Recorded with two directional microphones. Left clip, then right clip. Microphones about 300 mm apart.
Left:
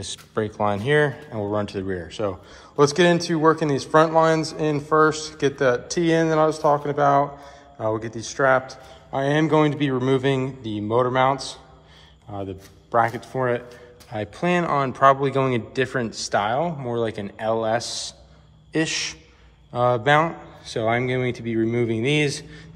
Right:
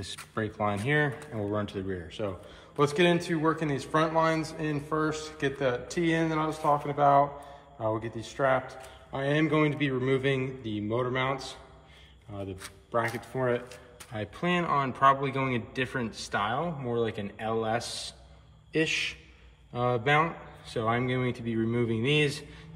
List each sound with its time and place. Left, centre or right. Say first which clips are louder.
0.0 s a man's voice: left 7 dB; centre